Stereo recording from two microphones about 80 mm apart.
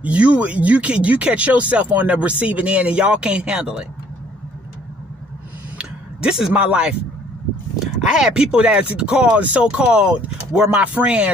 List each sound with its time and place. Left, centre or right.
0.0 s speech: centre
5.8 s speech: centre